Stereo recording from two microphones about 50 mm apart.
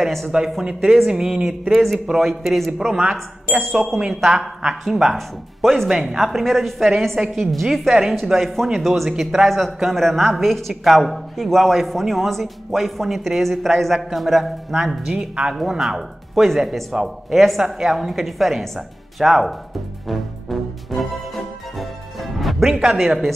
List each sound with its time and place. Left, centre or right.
0.0 s speech: centre
1.0 s speech: centre
2.9 s speech: centre
20.1 s music: centre